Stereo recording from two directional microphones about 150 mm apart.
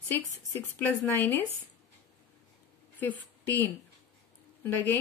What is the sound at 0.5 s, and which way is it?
Speech, 10° left (ahead or behind).